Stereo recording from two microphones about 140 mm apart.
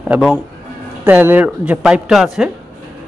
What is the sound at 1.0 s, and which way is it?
A man's voice, 15° right (ahead or behind).